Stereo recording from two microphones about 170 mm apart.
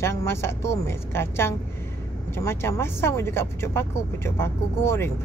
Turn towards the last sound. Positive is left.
turn(degrees=15)  # may be behind; listen again after turning